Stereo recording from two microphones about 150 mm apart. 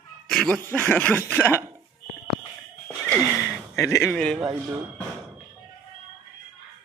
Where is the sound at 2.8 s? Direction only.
10° left (ahead or behind).